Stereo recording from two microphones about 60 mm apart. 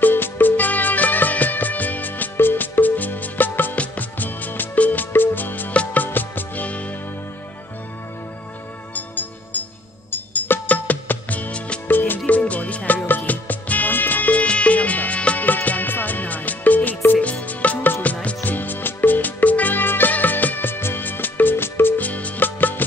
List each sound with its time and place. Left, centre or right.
0.0 s music: left
8.9 s music: left
11.9 s music: left